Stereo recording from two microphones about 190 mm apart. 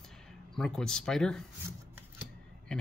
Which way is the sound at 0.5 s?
5° left (ahead or behind).